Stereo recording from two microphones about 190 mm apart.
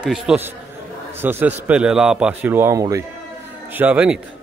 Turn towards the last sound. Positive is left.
turn(degrees=-5)  # may be behind; listen again after turning